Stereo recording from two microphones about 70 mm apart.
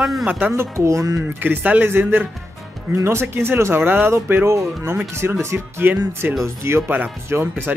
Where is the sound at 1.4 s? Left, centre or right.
Right.